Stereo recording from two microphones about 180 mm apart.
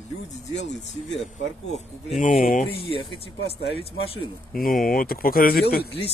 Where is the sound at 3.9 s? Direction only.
30° left (ahead or behind).